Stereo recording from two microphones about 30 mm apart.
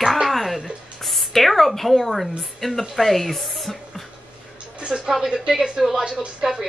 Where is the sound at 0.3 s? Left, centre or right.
Centre.